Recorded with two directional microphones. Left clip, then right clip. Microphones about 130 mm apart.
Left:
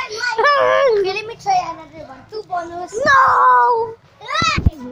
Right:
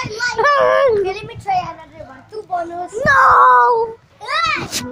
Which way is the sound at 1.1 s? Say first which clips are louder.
Left 2 dB; 20° left (ahead or behind).